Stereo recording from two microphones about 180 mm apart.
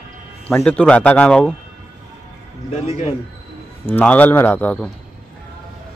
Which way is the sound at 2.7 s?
35° left (ahead or behind).